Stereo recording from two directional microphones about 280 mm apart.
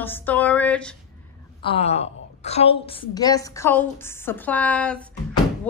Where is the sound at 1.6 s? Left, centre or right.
Centre.